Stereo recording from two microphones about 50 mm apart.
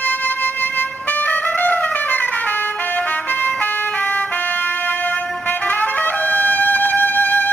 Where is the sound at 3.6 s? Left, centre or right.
Left.